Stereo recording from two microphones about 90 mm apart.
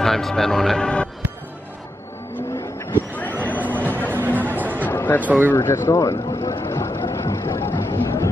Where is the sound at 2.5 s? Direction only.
30° left (ahead or behind).